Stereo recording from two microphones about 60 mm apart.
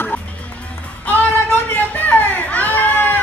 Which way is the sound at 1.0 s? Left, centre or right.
Left.